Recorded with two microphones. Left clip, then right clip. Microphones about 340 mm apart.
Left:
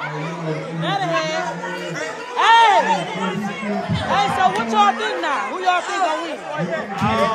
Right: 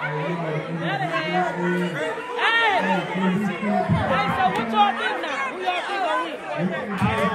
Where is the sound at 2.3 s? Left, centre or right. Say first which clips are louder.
Left 8 dB; centre.